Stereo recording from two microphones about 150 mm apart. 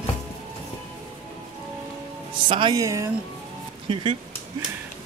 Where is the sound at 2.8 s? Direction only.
20° right (ahead or behind).